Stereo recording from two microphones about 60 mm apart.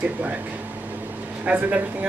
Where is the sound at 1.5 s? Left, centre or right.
Right.